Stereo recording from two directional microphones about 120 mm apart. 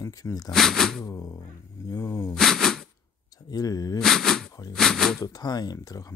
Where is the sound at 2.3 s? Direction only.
5° left (ahead or behind).